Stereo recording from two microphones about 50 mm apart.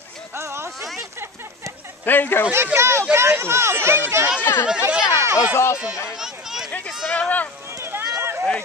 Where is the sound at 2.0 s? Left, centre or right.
Left.